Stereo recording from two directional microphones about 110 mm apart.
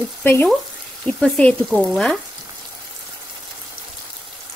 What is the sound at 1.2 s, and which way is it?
Speech, 10° left (ahead or behind).